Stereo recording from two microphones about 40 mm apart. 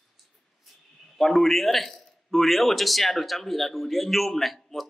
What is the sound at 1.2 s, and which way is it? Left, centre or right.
A man's voice, centre.